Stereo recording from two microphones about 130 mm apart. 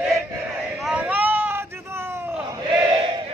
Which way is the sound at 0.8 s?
10° right (ahead or behind).